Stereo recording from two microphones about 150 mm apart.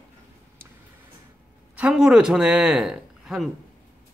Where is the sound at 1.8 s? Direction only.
5° right (ahead or behind).